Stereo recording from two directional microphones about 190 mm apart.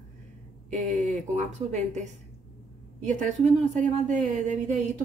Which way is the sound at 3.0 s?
40° right (ahead or behind).